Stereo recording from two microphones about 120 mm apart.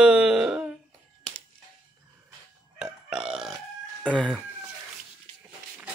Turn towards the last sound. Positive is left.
turn(degrees=0)  # may be behind; listen again after turning